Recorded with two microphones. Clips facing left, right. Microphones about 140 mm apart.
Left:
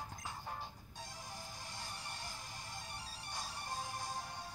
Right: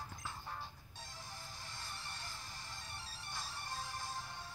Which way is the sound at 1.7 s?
40° left (ahead or behind).